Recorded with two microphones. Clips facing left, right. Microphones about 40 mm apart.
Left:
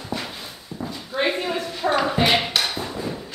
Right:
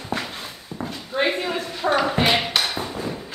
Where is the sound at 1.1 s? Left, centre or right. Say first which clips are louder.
Right 1 dB; centre.